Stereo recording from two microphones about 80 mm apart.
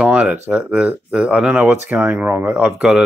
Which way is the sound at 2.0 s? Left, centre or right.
Right.